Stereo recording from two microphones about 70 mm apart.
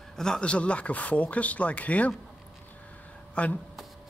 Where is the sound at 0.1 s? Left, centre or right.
Centre.